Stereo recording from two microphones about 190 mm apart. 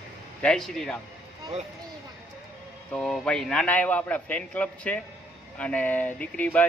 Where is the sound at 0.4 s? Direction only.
5° left (ahead or behind).